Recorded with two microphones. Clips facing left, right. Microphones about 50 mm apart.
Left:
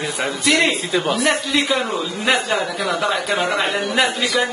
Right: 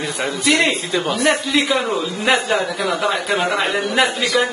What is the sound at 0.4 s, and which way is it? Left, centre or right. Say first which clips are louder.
Speech: right 1 dB; centre.